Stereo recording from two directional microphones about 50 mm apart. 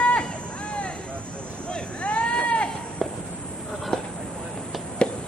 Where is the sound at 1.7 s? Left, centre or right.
Left.